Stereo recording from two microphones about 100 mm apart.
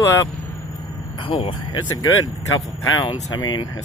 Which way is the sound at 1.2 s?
60° left (ahead or behind).